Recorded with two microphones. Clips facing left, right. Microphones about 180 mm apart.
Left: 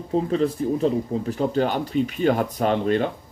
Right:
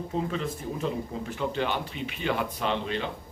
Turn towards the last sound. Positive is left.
turn(degrees=50)  # may be behind; listen again after turning